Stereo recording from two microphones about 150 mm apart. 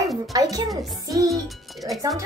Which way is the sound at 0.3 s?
25° right (ahead or behind).